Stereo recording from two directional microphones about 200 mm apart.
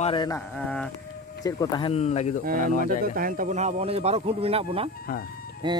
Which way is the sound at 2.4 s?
45° right (ahead or behind).